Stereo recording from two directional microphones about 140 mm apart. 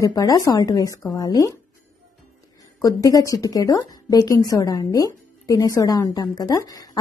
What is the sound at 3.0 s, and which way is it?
A woman's voice, 25° left (ahead or behind).